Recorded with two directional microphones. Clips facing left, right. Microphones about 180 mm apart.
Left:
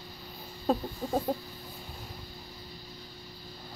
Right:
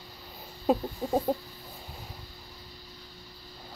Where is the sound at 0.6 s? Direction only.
15° right (ahead or behind).